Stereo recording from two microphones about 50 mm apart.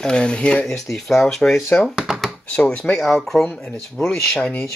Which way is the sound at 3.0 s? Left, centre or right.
Centre.